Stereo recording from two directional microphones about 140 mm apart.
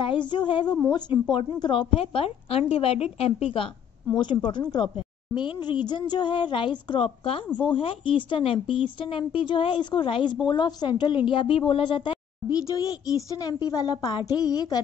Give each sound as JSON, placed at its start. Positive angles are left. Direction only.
{"t": 0.0, "sound": "a woman's voice", "side_deg": 35}